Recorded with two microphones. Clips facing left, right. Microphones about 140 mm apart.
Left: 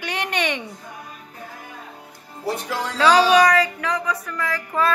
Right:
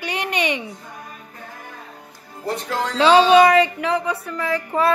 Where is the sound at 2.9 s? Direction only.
25° right (ahead or behind).